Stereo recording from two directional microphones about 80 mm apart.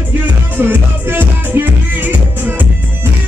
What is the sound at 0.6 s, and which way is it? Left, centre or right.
Music, right.